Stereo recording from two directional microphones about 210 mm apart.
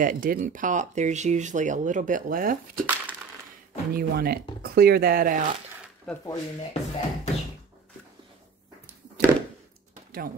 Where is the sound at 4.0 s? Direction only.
45° right (ahead or behind).